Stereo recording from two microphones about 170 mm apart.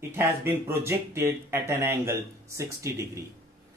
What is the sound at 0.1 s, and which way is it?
Speech, 15° right (ahead or behind).